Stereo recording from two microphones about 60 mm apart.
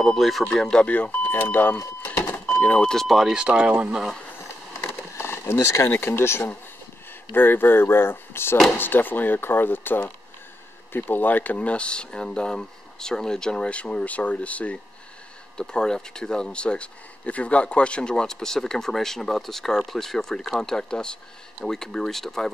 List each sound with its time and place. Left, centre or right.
0.0 s speech: centre
0.8 s speech: left
3.1 s speech: centre
4.8 s a sound: left
5.9 s speech: left
15.5 s speech: centre